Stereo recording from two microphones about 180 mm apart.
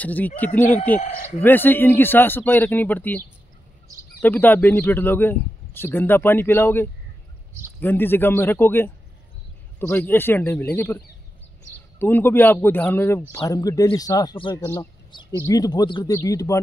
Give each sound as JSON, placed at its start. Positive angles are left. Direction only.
{"t": 0.0, "sound": "speech", "side_deg": 10}
{"t": 12.0, "sound": "speech", "side_deg": 10}
{"t": 14.7, "sound": "a sound", "side_deg": 25}
{"t": 15.4, "sound": "speech", "side_deg": 20}